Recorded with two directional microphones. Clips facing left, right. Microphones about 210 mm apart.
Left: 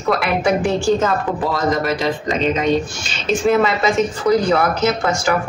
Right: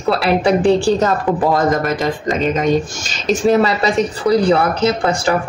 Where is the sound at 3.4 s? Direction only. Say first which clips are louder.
Right 2 dB; 35° right (ahead or behind).